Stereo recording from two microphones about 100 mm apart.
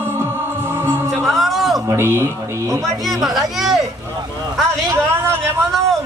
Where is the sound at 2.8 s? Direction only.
Centre (ahead or behind).